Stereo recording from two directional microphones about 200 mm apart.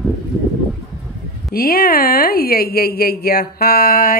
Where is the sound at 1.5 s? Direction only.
50° left (ahead or behind).